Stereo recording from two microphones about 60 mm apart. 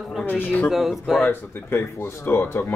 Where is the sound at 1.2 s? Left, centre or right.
Left.